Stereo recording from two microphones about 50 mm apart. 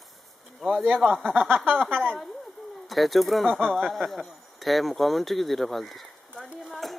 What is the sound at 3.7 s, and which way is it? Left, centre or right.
Speech, centre.